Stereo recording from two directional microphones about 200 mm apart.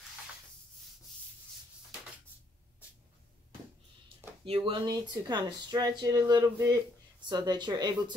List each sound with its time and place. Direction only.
4.5 s speech: 30° right (ahead or behind)